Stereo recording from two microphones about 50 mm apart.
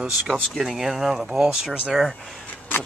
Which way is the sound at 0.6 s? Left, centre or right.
Centre.